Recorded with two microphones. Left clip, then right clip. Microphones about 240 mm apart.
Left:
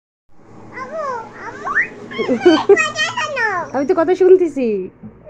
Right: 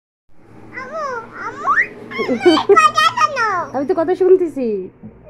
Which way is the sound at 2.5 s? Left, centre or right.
Right.